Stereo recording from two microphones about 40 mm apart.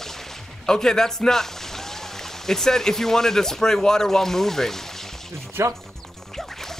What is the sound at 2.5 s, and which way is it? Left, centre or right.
Speech, centre.